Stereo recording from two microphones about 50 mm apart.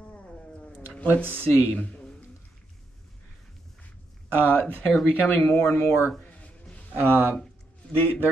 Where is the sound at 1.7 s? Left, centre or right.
Left.